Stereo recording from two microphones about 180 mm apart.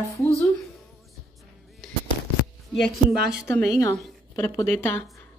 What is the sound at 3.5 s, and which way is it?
Speech, 15° left (ahead or behind).